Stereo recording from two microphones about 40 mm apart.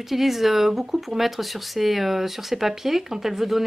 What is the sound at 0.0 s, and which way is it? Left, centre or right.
Speech, centre.